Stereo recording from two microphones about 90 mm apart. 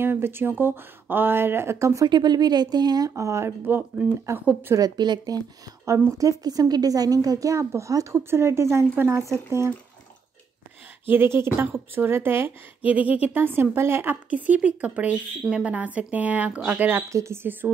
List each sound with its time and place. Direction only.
0.0 s a woman's voice: 25° right (ahead or behind)
2.0 s speech: 55° right (ahead or behind); by 4.7 s 20° right (ahead or behind)
4.7 s a woman's voice: 50° right (ahead or behind); by 9.8 s 30° right (ahead or behind)
11.1 s a woman's voice: 25° right (ahead or behind)
14.3 s speech: 15° right (ahead or behind)
17.1 s a woman's voice: 30° right (ahead or behind)